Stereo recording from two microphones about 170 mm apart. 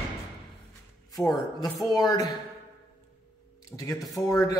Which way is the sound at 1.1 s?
20° left (ahead or behind).